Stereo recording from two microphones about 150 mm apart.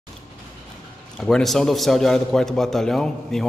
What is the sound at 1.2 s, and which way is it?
A man's voice, centre (ahead or behind).